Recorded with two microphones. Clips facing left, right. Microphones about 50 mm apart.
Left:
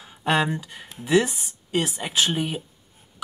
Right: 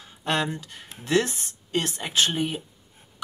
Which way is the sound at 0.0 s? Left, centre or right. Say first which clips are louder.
Left 4 dB; centre.